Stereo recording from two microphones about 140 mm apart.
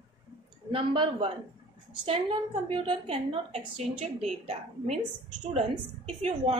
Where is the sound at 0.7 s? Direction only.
40° right (ahead or behind).